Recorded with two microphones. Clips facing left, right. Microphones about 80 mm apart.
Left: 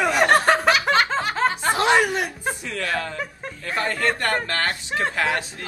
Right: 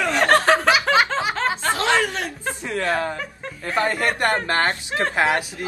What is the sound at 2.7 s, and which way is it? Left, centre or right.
Speech, right.